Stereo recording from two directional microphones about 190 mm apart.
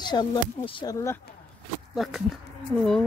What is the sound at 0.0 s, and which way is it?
Speech, 20° left (ahead or behind).